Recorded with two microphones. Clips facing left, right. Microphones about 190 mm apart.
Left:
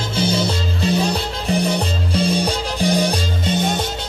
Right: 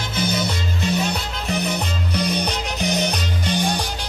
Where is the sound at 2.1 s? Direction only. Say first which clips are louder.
Left 4 dB; 30° left (ahead or behind).